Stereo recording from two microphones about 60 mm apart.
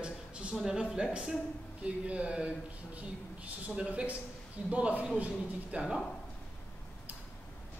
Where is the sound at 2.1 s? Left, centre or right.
Right.